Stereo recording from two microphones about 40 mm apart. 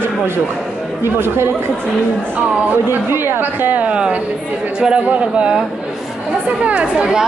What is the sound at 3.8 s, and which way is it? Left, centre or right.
Speech, right.